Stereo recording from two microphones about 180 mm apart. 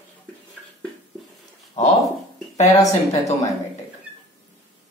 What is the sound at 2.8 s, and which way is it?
Speech, 40° left (ahead or behind).